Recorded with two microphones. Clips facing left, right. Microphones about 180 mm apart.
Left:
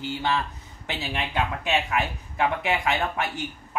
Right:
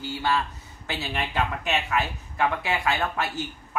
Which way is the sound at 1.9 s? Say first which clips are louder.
Even; 20° left (ahead or behind).